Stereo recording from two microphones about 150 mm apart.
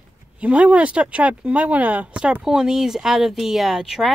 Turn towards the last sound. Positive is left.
turn(degrees=-5)  # may be behind; listen again after turning